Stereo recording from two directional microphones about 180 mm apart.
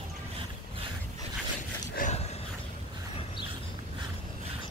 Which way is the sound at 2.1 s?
35° left (ahead or behind).